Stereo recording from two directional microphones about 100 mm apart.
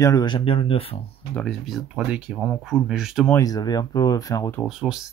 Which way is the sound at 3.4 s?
40° left (ahead or behind).